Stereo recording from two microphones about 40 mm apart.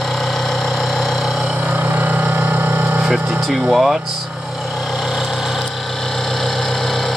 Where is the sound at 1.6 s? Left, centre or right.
Right.